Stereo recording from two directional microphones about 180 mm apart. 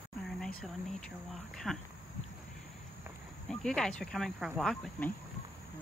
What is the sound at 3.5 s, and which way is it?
Speech, 5° left (ahead or behind).